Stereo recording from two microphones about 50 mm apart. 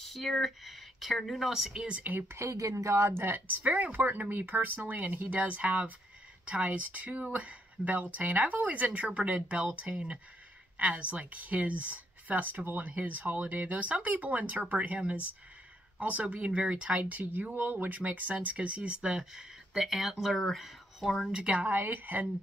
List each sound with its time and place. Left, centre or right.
0.0 s speech: centre
1.9 s speech: right
2.2 s a woman's voice: right
19.1 s speech: centre
21.3 s speech: centre
21.5 s speech: right